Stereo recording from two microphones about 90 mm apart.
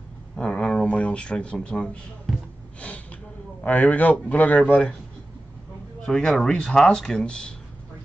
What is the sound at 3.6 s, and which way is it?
Speech, 15° left (ahead or behind).